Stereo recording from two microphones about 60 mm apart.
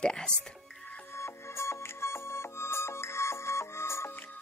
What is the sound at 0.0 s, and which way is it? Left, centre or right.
Music, centre.